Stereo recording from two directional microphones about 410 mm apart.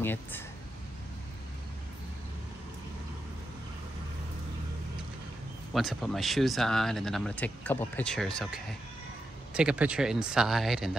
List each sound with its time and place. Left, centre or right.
0.0 s speech: centre
5.7 s speech: centre